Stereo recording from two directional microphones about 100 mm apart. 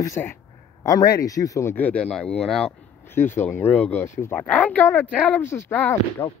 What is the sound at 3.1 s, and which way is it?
Speech, 20° left (ahead or behind).